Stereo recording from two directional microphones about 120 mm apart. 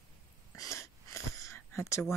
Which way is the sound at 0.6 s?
25° left (ahead or behind).